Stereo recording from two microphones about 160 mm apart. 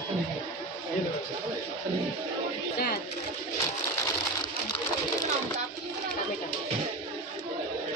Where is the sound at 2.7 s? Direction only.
75° left (ahead or behind).